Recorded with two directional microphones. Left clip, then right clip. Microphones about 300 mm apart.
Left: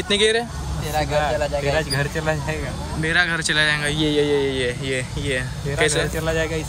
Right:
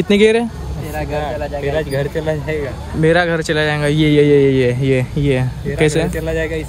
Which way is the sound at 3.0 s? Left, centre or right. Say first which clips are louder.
Right 6 dB; centre.